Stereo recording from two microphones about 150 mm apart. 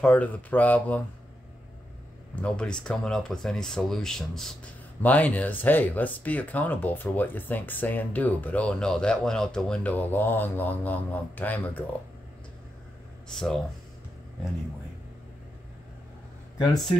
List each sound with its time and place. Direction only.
0.0 s speech: 10° left (ahead or behind)
2.3 s speech: 5° left (ahead or behind)
13.3 s speech: 5° left (ahead or behind)